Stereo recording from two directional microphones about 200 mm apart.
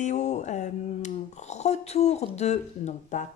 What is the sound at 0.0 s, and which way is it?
Speech, 35° left (ahead or behind).